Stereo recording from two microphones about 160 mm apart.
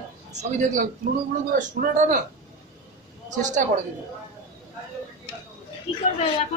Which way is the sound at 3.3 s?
50° right (ahead or behind).